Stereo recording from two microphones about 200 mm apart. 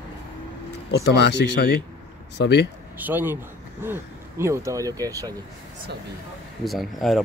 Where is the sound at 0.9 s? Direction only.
60° left (ahead or behind).